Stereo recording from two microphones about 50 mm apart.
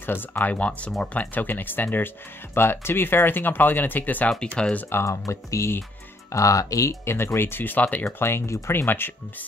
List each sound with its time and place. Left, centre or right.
0.0 s speech: left
0.6 s speech: left
1.3 s speech: left
2.5 s speech: left
4.6 s speech: centre
5.0 s speech: left
6.3 s speech: left
7.3 s speech: left
8.2 s speech: left
8.5 s speech: left
8.7 s speech: left